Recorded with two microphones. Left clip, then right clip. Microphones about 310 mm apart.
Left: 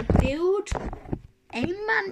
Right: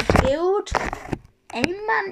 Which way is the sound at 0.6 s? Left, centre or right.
Right.